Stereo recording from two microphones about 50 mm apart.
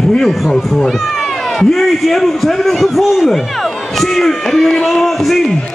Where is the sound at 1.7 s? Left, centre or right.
Centre.